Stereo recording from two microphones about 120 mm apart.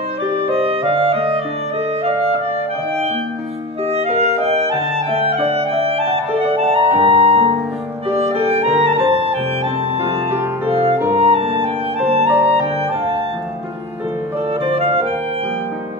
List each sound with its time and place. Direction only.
0.4 s music: 50° right (ahead or behind)
3.9 s music: 60° right (ahead or behind)
10.7 s music: 55° right (ahead or behind)
12.3 s music: 15° right (ahead or behind)
12.5 s clarinet: 60° right (ahead or behind)
14.6 s music: 55° right (ahead or behind)